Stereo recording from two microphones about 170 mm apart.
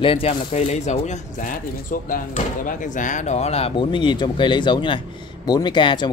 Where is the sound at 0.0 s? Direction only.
35° left (ahead or behind).